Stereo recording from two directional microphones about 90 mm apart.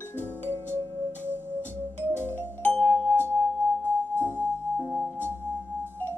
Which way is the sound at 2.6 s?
15° left (ahead or behind).